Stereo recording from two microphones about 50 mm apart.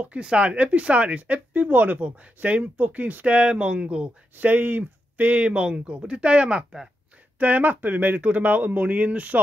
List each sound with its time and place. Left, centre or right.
0.2 s speech: right
3.3 s speech: right
4.4 s speech: right
7.3 s speech: right